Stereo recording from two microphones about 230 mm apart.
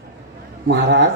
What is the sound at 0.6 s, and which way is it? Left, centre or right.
Speech, right.